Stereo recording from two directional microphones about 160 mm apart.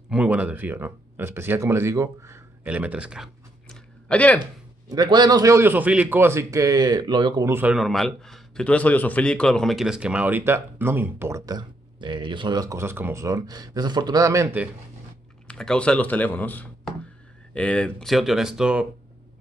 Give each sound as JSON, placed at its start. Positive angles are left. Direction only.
{"t": 0.1, "sound": "speech", "side_deg": -10}
{"t": 4.8, "sound": "a man's voice", "side_deg": -25}
{"t": 7.5, "sound": "a man's voice", "side_deg": -5}
{"t": 15.4, "sound": "speech", "side_deg": 5}